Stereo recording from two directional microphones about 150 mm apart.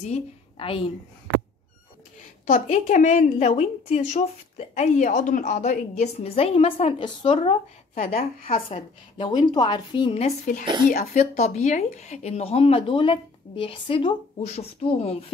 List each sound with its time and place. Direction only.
0.0 s a woman's voice: 40° left (ahead or behind)
2.4 s a woman's voice: 60° left (ahead or behind); by 7.5 s 35° left (ahead or behind)
8.0 s a woman's voice: 70° left (ahead or behind)
8.6 s a woman's voice: 35° left (ahead or behind)